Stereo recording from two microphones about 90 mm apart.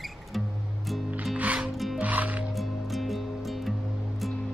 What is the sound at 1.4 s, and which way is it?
Music, 15° right (ahead or behind).